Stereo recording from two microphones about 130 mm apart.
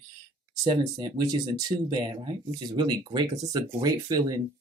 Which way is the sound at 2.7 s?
35° right (ahead or behind).